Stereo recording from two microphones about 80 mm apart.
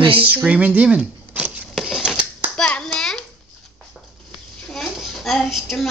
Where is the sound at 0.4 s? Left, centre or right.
Centre.